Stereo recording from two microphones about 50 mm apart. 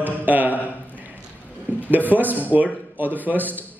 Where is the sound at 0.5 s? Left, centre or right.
Left.